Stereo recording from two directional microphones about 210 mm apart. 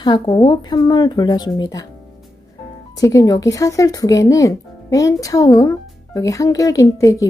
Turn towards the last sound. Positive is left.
turn(degrees=15)  # may be behind; listen again after turning